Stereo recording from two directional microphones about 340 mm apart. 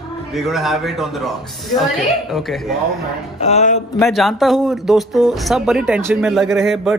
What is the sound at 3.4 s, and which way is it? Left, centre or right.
Speech, centre.